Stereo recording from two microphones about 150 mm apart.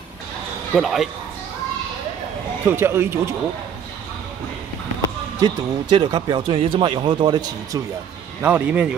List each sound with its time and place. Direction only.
0.7 s speech: centre (ahead or behind)
2.6 s speech: 15° right (ahead or behind)
5.4 s speech: 30° right (ahead or behind)
8.4 s speech: 10° right (ahead or behind)